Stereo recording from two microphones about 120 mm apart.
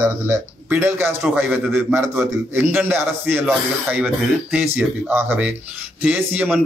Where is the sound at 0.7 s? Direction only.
20° right (ahead or behind).